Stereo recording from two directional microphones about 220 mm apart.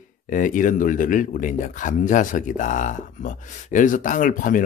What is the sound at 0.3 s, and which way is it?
A man's voice, 35° left (ahead or behind).